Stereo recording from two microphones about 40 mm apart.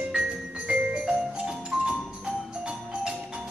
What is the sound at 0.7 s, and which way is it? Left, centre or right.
Music, right.